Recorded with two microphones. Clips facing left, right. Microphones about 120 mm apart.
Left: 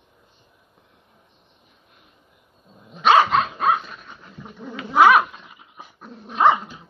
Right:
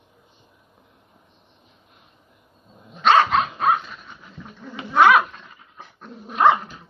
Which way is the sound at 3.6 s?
Centre (ahead or behind).